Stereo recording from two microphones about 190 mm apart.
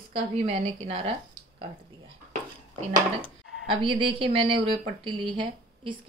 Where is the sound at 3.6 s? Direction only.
25° right (ahead or behind).